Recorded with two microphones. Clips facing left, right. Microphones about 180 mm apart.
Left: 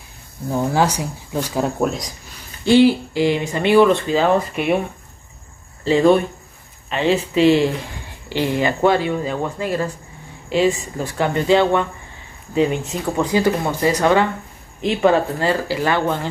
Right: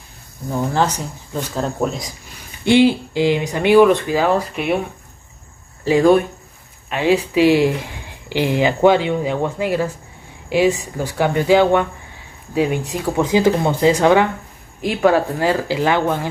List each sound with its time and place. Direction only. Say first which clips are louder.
0.5 s speech: left 1 dB; 10° left (ahead or behind)
2.6 s speech: even; 20° right (ahead or behind)
5.9 s speech: right 1 dB; 5° right (ahead or behind)
13.2 s speech: right 3 dB; 20° right (ahead or behind)